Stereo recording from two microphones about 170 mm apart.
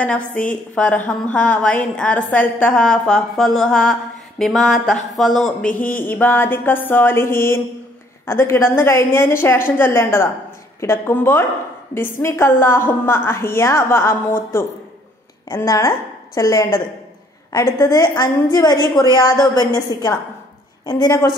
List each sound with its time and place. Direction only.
0.0 s a woman's voice: 10° left (ahead or behind)